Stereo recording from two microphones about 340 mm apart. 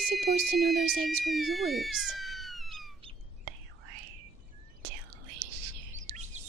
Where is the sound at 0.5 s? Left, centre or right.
Centre.